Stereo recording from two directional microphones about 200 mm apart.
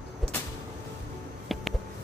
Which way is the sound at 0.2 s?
Centre (ahead or behind).